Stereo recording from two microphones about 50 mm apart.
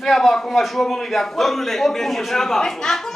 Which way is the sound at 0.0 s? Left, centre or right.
Centre.